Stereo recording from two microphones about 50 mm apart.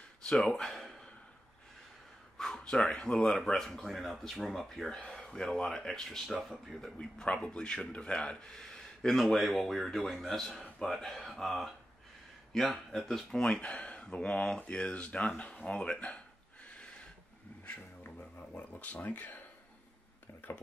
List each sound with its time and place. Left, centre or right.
0.3 s speech: centre
2.3 s speech: centre
12.9 s speech: centre
13.4 s speech: centre
16.6 s a sound: left
18.7 s speech: left